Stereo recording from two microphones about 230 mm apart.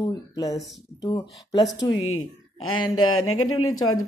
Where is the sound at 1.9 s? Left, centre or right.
Left.